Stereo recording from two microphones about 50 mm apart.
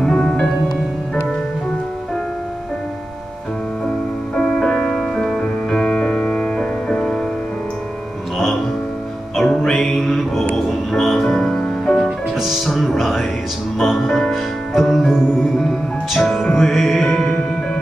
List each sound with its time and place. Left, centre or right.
0.0 s music: centre
4.4 s music: centre
9.4 s music: centre